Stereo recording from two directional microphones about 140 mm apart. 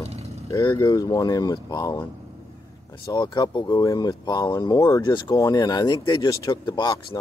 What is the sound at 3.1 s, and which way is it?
Speech, 30° left (ahead or behind).